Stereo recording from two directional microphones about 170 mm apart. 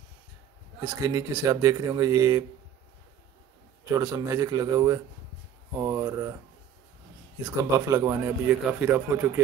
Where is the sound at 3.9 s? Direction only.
20° right (ahead or behind).